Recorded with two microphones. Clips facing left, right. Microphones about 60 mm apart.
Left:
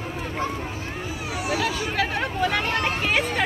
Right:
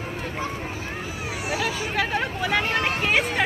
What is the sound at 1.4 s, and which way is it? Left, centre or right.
Hubbub, centre.